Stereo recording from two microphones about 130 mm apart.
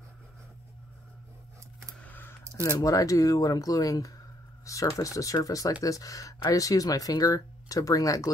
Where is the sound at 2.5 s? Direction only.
25° left (ahead or behind).